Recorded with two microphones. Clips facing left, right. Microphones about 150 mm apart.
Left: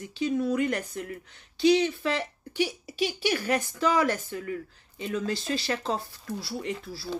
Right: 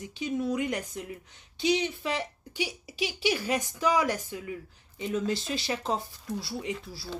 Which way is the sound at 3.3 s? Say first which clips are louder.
Right 2 dB; 15° right (ahead or behind).